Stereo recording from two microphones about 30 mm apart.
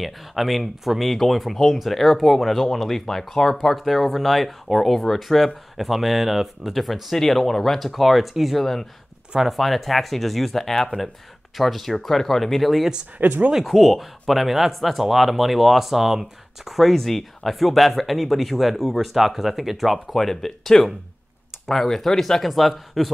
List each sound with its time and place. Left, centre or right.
0.0 s speech: centre
5.8 s speech: centre
6.7 s speech: centre
13.2 s speech: right
13.7 s speech: centre
16.8 s speech: centre
20.2 s speech: centre